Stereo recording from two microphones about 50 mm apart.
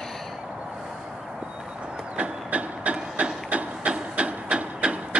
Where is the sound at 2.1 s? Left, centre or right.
Right.